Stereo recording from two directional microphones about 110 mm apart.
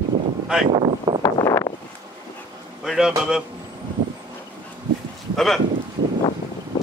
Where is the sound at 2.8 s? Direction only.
5° right (ahead or behind).